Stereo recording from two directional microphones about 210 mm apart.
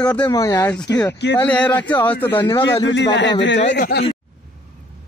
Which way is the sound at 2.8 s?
60° left (ahead or behind).